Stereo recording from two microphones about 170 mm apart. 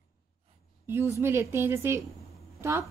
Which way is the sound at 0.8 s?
15° right (ahead or behind).